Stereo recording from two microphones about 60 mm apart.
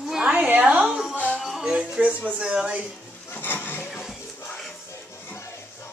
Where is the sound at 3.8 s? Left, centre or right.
Centre.